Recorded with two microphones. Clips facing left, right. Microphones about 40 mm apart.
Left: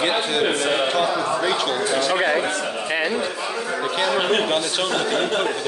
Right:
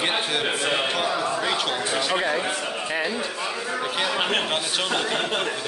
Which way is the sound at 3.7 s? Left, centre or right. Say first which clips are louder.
Left 4 dB; centre.